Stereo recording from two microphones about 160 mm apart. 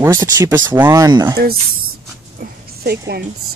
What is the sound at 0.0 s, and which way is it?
Speech, 15° right (ahead or behind).